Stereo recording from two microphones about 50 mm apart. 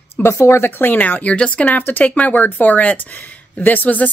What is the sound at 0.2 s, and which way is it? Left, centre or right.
A woman's voice, left.